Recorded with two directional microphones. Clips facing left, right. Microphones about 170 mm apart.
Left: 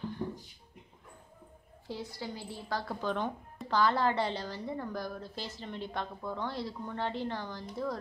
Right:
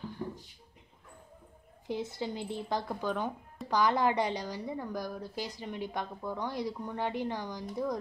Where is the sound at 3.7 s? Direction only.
15° right (ahead or behind).